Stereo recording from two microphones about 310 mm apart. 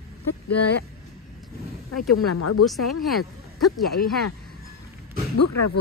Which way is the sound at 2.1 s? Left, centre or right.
Left.